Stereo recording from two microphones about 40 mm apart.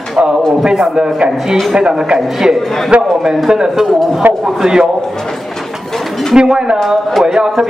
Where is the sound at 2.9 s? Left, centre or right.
Right.